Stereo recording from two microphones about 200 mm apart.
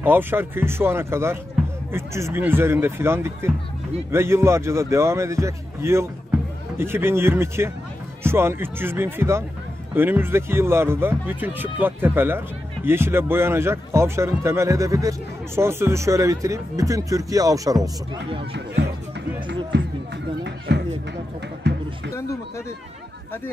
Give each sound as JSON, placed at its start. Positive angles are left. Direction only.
{"t": 0.0, "sound": "speech", "side_deg": -10}
{"t": 19.4, "sound": "a sound", "side_deg": -65}
{"t": 21.7, "sound": "basketball bounce", "side_deg": -60}